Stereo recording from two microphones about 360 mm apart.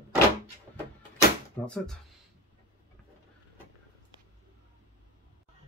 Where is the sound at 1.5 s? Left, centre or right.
Centre.